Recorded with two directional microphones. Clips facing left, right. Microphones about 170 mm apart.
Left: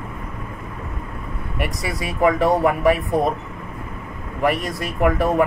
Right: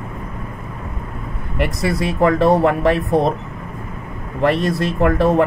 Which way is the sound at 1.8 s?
70° right (ahead or behind).